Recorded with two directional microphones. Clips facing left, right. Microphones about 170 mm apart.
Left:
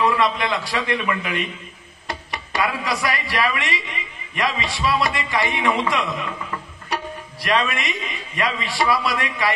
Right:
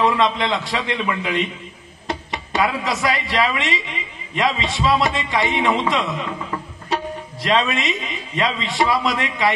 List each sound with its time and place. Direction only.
0.0 s speech: 20° right (ahead or behind)